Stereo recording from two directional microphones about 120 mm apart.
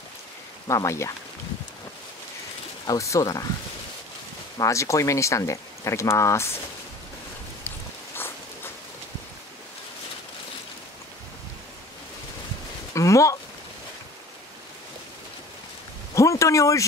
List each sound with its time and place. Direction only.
0.7 s speech: 25° left (ahead or behind)
2.9 s speech: 25° left (ahead or behind)
4.6 s speech: 25° left (ahead or behind)
12.9 s speech: 25° left (ahead or behind)
16.2 s speech: 25° left (ahead or behind)